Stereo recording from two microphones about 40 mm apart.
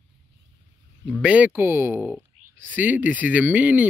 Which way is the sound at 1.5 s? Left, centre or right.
Right.